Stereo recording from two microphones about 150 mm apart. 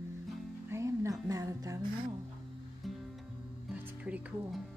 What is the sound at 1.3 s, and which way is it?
Speech, 25° right (ahead or behind).